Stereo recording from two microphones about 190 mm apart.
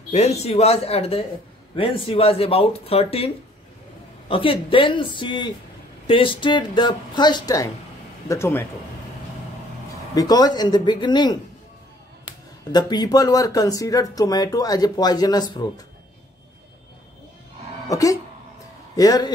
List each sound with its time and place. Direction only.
0.1 s speech: 35° left (ahead or behind)
4.3 s speech: 30° left (ahead or behind); by 8.6 s 10° left (ahead or behind)
10.1 s speech: 20° left (ahead or behind)
12.7 s speech: 20° left (ahead or behind)
17.8 s speech: 15° left (ahead or behind)